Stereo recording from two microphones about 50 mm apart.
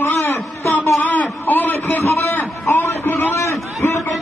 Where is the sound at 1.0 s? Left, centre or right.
Left.